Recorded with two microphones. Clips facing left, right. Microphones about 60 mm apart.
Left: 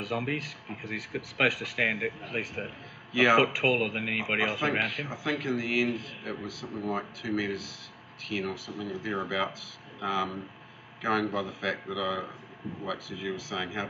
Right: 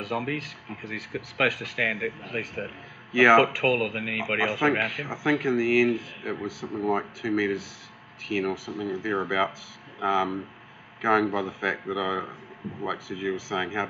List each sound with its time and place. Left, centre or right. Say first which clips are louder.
0.0 s speech: right 2 dB; centre
2.6 s speech: right 3 dB; right
3.5 s speech: right 2 dB; centre
4.2 s speech: right 5 dB; centre